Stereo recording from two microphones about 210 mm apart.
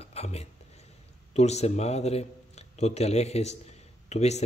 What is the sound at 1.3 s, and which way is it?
A man's voice, 30° left (ahead or behind).